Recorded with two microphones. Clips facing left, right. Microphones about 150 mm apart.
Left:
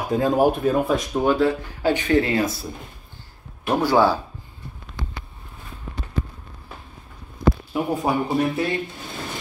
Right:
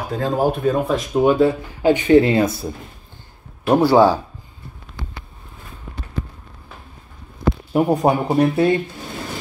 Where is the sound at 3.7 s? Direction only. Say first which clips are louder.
Right 5 dB; 15° right (ahead or behind).